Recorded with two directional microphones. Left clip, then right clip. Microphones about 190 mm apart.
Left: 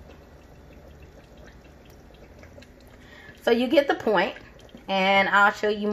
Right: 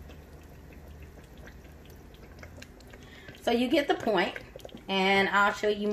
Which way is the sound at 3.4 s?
25° left (ahead or behind).